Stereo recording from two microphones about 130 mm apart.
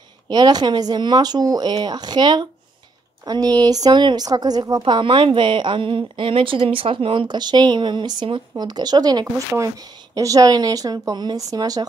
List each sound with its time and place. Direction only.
0.3 s a woman's voice: 35° right (ahead or behind)